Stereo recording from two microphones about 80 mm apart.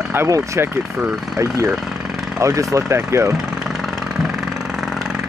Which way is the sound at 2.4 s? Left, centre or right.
Right.